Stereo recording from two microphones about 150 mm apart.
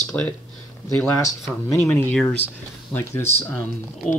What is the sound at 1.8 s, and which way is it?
Speech, 10° left (ahead or behind).